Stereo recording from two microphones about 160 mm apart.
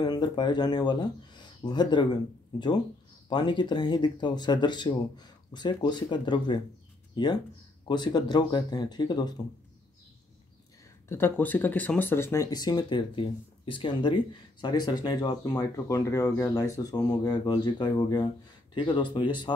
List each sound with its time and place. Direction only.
0.0 s speech: 25° left (ahead or behind)
11.1 s speech: 15° left (ahead or behind)